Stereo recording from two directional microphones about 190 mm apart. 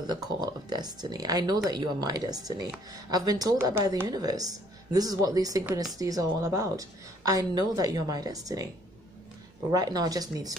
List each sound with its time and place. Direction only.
0.0 s speech: 20° right (ahead or behind)
9.7 s speech: 20° right (ahead or behind)